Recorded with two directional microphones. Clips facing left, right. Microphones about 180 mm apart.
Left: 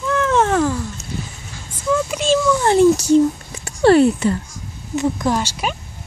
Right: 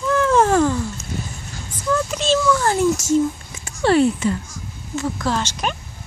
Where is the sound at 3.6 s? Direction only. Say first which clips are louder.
Left 4 dB; 45° left (ahead or behind).